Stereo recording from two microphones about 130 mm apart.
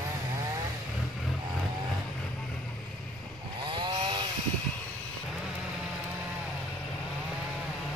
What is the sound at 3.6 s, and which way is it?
Chainsaw, 40° right (ahead or behind).